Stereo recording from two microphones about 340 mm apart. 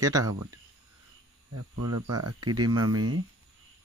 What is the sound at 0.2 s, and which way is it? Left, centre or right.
Speech, right.